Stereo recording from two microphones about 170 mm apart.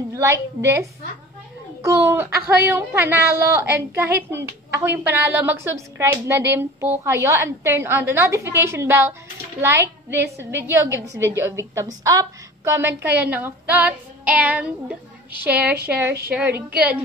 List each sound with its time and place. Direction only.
0.1 s a woman's voice: 20° right (ahead or behind)
15.7 s speech: 65° right (ahead or behind)
16.3 s a woman's voice: 10° right (ahead or behind)